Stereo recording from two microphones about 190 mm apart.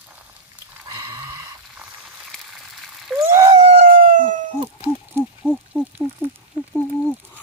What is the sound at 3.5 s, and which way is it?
Howl, 35° right (ahead or behind).